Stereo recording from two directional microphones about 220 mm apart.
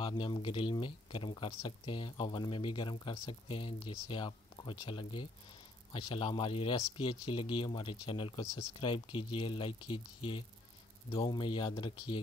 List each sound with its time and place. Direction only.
0.0 s speech: 20° left (ahead or behind)